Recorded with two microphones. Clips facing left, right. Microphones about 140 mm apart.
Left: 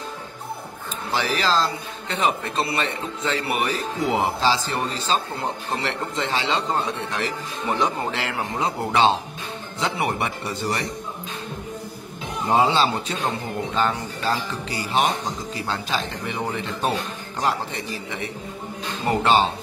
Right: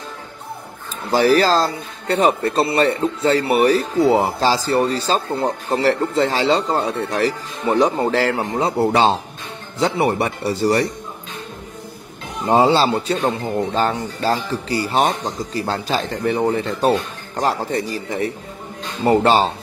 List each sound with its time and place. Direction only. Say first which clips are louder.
1.1 s speech: right 8 dB; 40° right (ahead or behind)
12.4 s speech: right 5 dB; 40° right (ahead or behind)